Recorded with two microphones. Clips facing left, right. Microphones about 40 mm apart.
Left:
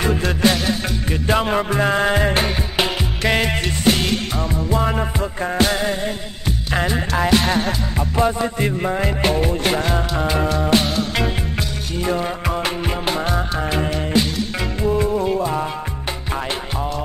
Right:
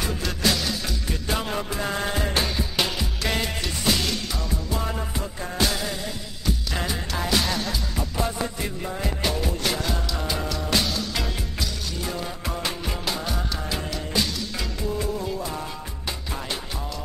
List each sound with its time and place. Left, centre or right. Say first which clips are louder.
0.0 s music: left 8 dB; left